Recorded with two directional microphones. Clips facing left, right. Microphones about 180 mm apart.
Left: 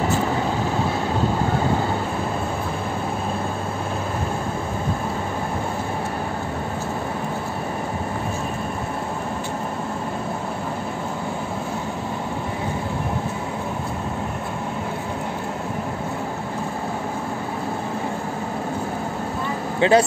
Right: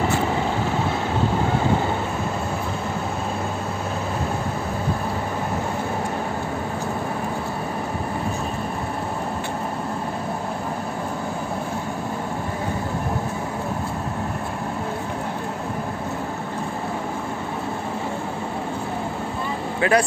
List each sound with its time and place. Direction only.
19.8 s a man's voice: 25° left (ahead or behind)